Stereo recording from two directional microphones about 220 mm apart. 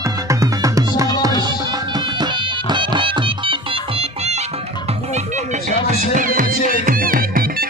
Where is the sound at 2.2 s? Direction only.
20° right (ahead or behind).